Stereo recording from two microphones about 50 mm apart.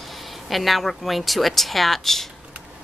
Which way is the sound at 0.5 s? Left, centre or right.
Centre.